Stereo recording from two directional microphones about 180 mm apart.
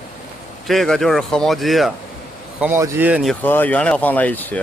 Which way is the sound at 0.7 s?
Centre (ahead or behind).